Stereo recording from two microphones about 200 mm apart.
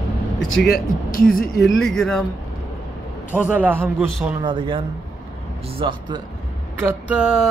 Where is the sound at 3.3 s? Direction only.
5° right (ahead or behind).